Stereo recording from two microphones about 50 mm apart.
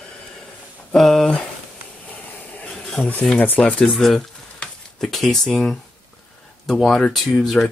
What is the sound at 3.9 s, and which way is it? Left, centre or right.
Speech, centre.